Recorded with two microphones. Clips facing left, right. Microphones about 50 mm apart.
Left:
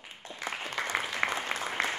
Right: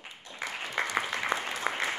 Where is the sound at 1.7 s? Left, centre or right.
Right.